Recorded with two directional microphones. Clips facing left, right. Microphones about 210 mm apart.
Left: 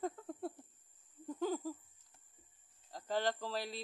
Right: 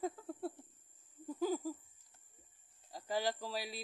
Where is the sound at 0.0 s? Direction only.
5° right (ahead or behind).